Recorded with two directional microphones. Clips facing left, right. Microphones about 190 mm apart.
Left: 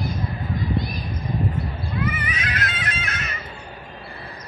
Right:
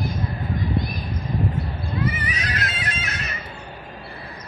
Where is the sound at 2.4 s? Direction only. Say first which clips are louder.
Even; 35° right (ahead or behind).